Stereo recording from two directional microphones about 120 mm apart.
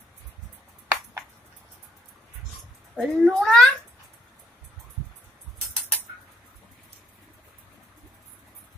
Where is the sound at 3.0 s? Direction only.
5° left (ahead or behind).